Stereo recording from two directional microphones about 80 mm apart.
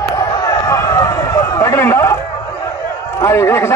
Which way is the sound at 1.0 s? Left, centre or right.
Left.